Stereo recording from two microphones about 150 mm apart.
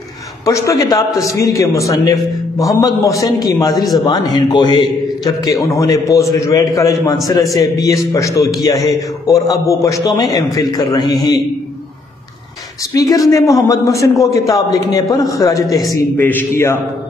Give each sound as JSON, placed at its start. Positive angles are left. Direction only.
{"t": 0.5, "sound": "a man's voice", "side_deg": 20}
{"t": 12.9, "sound": "a man's voice", "side_deg": 25}